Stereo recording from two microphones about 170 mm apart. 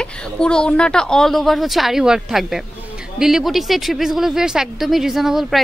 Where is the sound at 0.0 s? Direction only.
5° left (ahead or behind).